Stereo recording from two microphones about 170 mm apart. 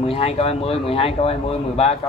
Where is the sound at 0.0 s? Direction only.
35° left (ahead or behind).